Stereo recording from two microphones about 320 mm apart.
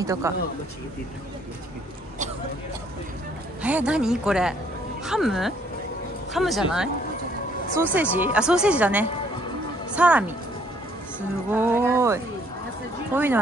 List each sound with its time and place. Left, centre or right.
0.0 s speech: centre
3.6 s a woman's voice: centre
11.5 s speech: centre